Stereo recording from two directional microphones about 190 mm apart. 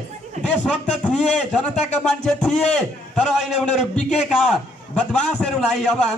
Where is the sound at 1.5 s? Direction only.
5° left (ahead or behind).